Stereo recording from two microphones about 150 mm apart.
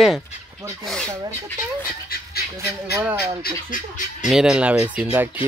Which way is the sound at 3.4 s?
60° left (ahead or behind).